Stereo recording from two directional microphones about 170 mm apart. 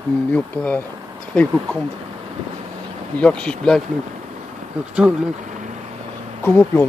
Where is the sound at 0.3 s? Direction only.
10° left (ahead or behind).